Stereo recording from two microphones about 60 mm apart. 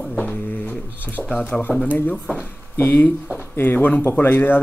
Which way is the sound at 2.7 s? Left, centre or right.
Left.